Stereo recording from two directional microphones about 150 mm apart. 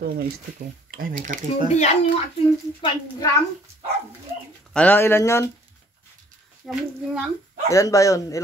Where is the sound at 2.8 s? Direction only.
35° left (ahead or behind).